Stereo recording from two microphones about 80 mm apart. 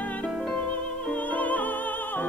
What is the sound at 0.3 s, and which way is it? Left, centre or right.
Music, centre.